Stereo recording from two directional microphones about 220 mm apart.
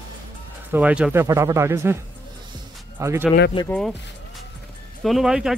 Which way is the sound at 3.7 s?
5° left (ahead or behind).